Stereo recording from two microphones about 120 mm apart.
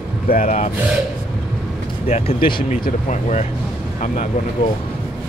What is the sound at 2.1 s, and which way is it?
Speech, 50° left (ahead or behind).